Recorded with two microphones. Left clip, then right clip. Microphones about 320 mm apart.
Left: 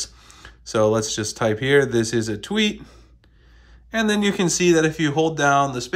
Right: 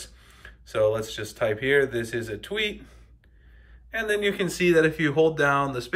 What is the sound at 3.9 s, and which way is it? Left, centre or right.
Speech, centre.